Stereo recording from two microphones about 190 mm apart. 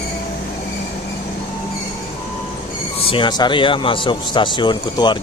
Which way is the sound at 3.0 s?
25° left (ahead or behind).